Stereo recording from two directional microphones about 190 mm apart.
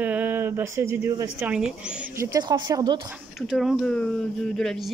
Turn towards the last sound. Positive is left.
turn(degrees=5)  # may be behind; listen again after turning